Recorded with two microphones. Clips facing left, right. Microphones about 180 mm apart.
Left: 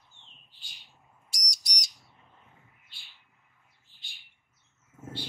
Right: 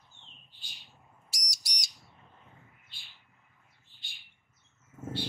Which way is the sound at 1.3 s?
5° right (ahead or behind).